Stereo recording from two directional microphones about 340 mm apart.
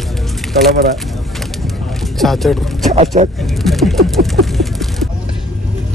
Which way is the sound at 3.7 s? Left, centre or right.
Centre.